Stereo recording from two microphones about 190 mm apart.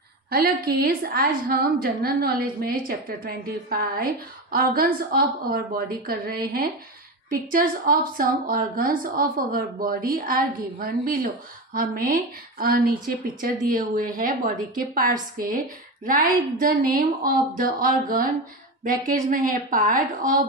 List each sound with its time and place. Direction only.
0.7 s a woman's voice: 50° right (ahead or behind)
19.3 s a woman's voice: 45° right (ahead or behind)